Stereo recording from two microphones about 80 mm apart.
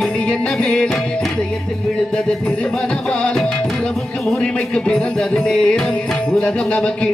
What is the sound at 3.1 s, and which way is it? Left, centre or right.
Music, centre.